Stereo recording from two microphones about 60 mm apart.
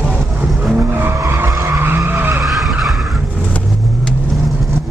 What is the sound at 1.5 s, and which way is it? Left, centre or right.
Vehicle, right.